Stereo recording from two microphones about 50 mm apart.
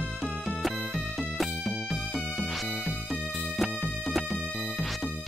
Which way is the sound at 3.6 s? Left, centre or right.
Centre.